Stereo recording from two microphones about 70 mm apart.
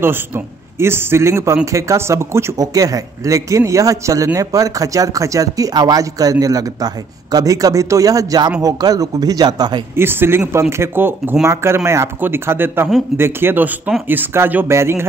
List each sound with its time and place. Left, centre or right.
0.7 s speech: right
2.5 s a man's voice: right
9.9 s speech: right